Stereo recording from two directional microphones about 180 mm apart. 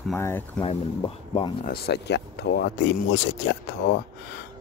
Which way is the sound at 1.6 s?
60° left (ahead or behind).